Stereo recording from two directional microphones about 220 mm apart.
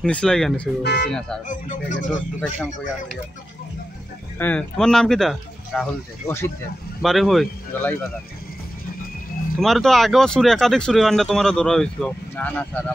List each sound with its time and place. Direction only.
0.0 s speech: 5° left (ahead or behind)
0.8 s speech: 50° left (ahead or behind)
1.5 s speech: 35° left (ahead or behind)
2.4 s speech: centre (ahead or behind)
4.4 s speech: 5° left (ahead or behind)
9.6 s speech: centre (ahead or behind)